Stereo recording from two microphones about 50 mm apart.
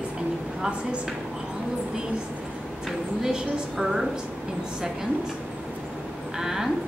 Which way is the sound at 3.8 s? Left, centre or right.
Centre.